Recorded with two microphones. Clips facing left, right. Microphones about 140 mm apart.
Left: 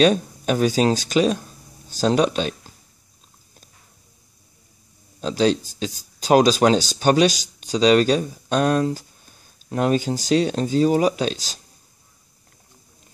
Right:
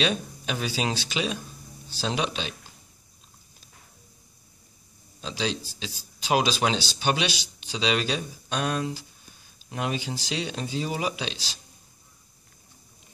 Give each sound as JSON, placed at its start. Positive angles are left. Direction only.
{"t": 0.0, "sound": "speech", "side_deg": 45}
{"t": 5.2, "sound": "speech", "side_deg": 45}